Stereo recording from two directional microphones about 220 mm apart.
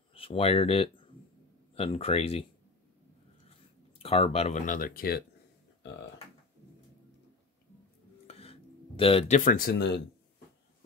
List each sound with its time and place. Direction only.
0.1 s speech: 25° left (ahead or behind)
4.0 s speech: 25° left (ahead or behind); by 5.2 s 40° left (ahead or behind)
8.3 s music: 25° left (ahead or behind); by 9.9 s 45° left (ahead or behind)